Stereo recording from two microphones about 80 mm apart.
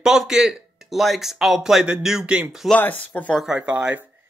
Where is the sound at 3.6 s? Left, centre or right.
Centre.